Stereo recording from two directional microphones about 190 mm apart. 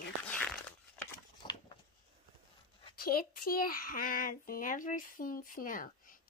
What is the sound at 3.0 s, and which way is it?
A child's voice, 50° left (ahead or behind).